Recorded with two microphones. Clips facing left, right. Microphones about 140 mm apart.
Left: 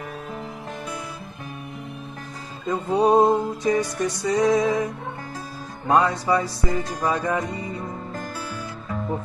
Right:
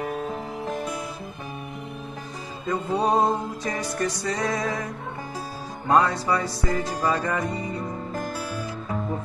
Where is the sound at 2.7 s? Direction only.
15° left (ahead or behind).